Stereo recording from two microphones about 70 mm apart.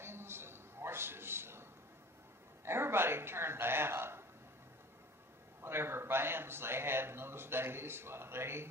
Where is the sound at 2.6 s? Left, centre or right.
Right.